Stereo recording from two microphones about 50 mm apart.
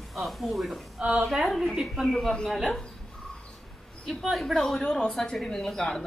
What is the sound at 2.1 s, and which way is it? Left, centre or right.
Speech, centre.